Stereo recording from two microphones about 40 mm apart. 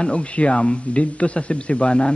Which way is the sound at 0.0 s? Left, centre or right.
Left.